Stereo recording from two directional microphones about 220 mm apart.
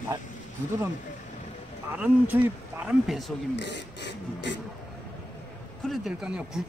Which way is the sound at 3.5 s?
50° left (ahead or behind).